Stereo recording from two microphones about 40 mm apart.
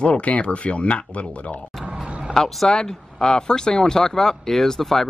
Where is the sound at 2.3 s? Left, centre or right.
Centre.